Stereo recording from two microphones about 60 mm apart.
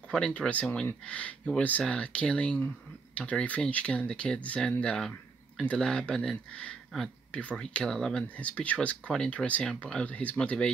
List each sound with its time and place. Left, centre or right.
0.3 s speech: left
8.4 s speech: left